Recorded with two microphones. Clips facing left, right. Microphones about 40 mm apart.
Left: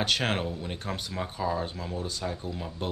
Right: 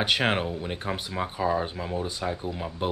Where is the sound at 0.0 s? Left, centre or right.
Centre.